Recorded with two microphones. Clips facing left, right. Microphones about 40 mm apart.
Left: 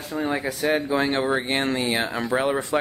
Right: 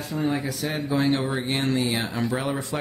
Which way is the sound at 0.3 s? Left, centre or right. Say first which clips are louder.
Left 4 dB; left.